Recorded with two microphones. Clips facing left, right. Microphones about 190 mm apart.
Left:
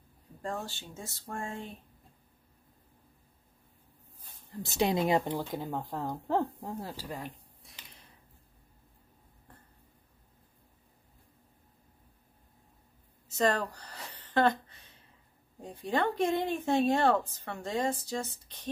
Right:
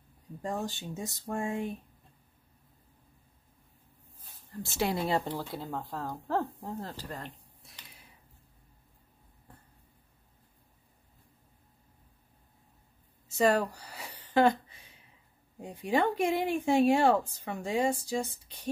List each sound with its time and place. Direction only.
0.4 s speech: 15° right (ahead or behind)
4.6 s speech: 20° left (ahead or behind); by 8.1 s 5° right (ahead or behind)
13.3 s a sound: 10° right (ahead or behind)
15.6 s speech: 10° right (ahead or behind)